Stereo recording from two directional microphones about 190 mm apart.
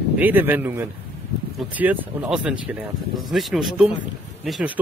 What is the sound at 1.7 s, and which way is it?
Speech, 5° right (ahead or behind).